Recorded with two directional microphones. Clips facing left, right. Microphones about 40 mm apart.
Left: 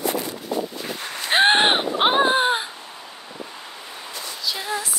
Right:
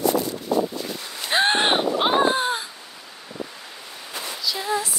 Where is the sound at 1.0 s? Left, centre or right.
Left.